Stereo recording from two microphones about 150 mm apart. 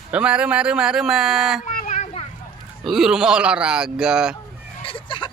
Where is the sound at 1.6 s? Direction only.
60° left (ahead or behind).